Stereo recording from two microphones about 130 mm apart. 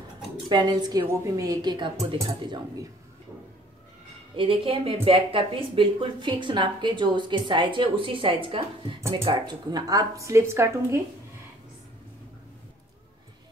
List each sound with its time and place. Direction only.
0.5 s speech: 30° right (ahead or behind)
4.4 s speech: 45° right (ahead or behind)
9.3 s speech: 30° right (ahead or behind)